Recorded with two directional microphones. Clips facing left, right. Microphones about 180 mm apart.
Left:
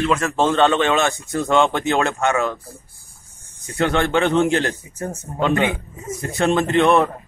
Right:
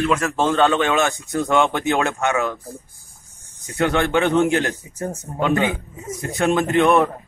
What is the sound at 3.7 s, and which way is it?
Speech, 10° right (ahead or behind).